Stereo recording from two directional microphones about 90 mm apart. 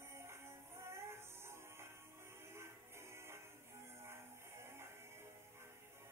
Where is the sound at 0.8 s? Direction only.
30° right (ahead or behind).